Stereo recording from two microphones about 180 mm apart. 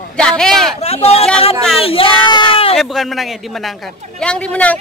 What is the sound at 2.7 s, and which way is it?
A man's voice, centre (ahead or behind).